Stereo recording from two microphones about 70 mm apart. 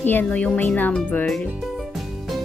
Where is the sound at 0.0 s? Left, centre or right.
Left.